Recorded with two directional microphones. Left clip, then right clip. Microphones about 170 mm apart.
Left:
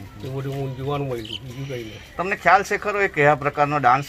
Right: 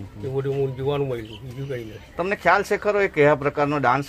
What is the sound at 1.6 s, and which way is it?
Speech, centre (ahead or behind).